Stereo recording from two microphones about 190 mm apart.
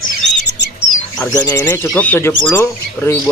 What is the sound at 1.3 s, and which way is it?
Speech, 15° left (ahead or behind).